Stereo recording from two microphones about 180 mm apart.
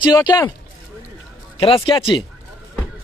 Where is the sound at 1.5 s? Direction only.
30° left (ahead or behind).